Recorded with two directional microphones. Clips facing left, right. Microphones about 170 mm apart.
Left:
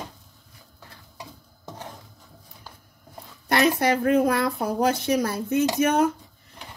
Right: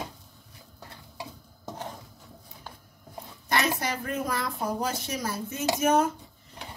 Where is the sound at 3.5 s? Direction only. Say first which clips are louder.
Left 7 dB; 60° left (ahead or behind).